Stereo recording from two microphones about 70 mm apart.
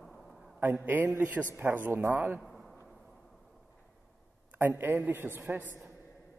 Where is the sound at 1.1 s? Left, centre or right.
Right.